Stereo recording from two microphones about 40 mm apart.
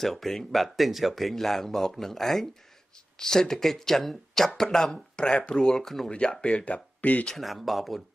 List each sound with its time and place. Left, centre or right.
0.0 s speech: centre
6.0 s speech: left
6.6 s speech: left
7.3 s speech: centre